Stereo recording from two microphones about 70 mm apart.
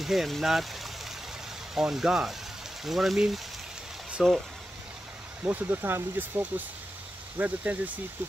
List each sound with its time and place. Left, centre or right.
0.0 s speech: centre
5.4 s speech: right